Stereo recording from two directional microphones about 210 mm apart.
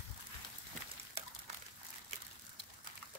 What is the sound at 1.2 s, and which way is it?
Water, 30° right (ahead or behind).